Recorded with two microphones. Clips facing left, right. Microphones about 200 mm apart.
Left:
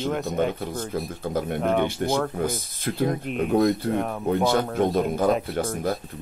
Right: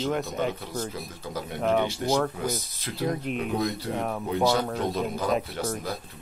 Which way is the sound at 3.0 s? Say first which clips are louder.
Left 3 dB; centre (ahead or behind).